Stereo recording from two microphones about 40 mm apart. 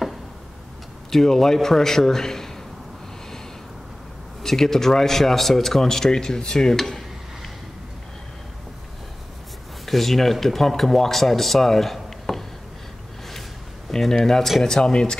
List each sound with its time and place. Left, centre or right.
1.1 s a man's voice: centre
4.4 s a man's voice: centre
9.8 s speech: centre
13.8 s a man's voice: centre